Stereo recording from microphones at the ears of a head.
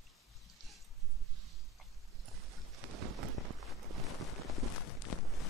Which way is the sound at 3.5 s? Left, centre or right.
Right.